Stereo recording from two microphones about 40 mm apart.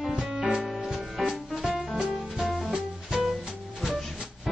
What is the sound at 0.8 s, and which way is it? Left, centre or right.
Music, centre.